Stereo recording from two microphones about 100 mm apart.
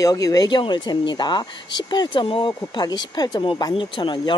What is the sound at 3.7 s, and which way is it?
Speech, 55° left (ahead or behind).